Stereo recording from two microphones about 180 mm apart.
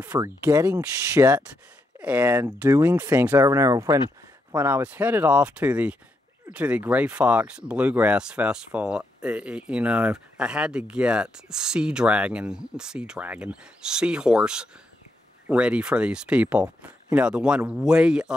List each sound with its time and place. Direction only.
0.0 s speech: 15° right (ahead or behind)